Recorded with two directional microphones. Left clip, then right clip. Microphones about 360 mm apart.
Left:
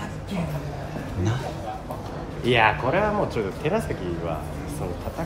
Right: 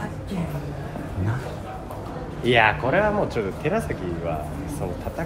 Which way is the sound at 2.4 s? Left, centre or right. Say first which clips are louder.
Right 1 dB; centre.